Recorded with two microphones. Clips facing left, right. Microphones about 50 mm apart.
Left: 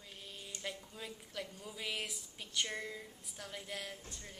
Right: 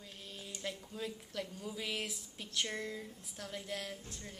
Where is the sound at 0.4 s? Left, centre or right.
Centre.